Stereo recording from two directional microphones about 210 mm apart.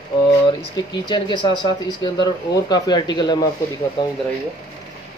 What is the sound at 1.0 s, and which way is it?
Speech, 20° left (ahead or behind).